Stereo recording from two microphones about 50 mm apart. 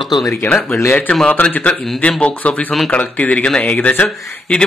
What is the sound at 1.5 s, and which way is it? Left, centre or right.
Speech, left.